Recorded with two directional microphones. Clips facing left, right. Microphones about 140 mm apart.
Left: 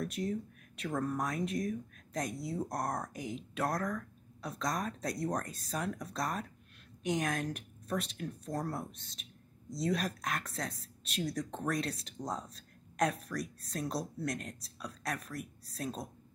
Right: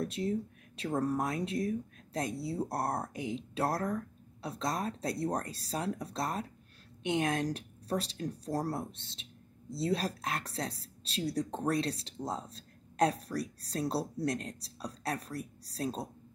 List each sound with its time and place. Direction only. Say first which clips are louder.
0.0 s a woman's voice: right 3 dB; 25° right (ahead or behind)